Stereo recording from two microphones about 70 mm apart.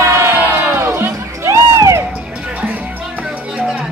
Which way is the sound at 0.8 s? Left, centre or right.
Right.